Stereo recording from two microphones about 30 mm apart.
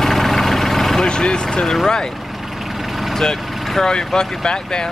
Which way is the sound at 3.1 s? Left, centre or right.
Centre.